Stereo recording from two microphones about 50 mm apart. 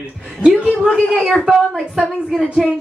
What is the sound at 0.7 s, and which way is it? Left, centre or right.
Speech, centre.